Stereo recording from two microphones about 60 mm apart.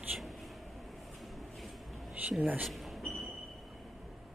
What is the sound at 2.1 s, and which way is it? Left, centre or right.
Speech, right.